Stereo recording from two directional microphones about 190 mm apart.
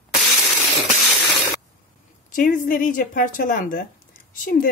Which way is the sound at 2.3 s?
45° left (ahead or behind).